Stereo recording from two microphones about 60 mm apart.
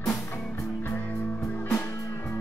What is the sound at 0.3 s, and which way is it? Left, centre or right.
Music, left.